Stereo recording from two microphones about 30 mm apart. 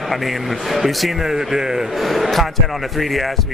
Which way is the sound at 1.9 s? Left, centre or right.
Centre.